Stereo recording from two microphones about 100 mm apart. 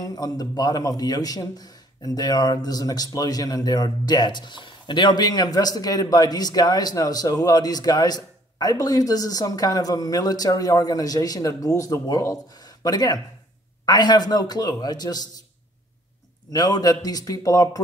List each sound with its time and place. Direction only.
0.0 s a man's voice: 40° left (ahead or behind)
16.5 s a man's voice: 40° left (ahead or behind)